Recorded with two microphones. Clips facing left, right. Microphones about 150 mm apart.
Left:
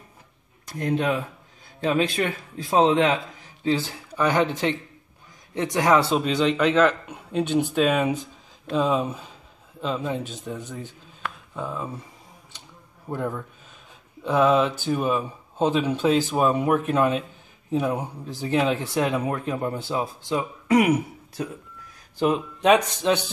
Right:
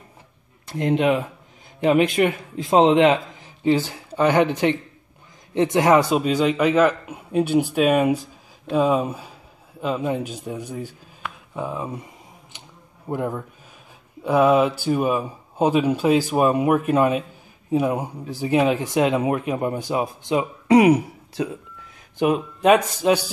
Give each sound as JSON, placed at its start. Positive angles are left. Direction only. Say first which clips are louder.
{"t": 0.7, "sound": "a man's voice", "louder": "right 5 dB", "side_deg": -20}
{"t": 6.1, "sound": "speech", "louder": "right 2 dB", "side_deg": -5}
{"t": 13.1, "sound": "speech", "louder": "right 3 dB", "side_deg": -15}
{"t": 20.7, "sound": "speech", "louder": "right 5 dB", "side_deg": -35}
{"t": 22.2, "sound": "speech", "louder": "right 3 dB", "side_deg": -5}